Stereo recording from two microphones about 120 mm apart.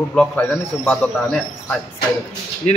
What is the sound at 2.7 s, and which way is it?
Speech, 65° left (ahead or behind).